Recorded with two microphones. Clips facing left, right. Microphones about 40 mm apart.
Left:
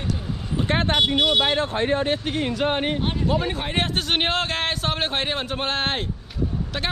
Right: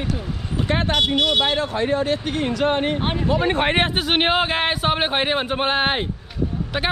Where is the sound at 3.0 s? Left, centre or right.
Right.